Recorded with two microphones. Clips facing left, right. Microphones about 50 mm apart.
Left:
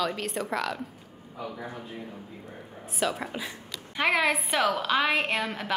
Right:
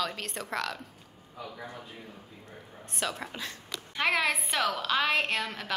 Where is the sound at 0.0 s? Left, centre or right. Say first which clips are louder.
Left 5 dB; centre.